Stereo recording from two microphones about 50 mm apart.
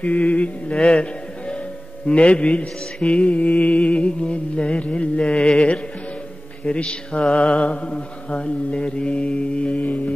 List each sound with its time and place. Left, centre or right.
0.0 s mantra: left
0.7 s mantra: centre
2.0 s mantra: left